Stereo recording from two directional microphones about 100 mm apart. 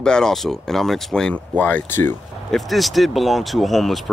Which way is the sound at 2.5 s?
Centre (ahead or behind).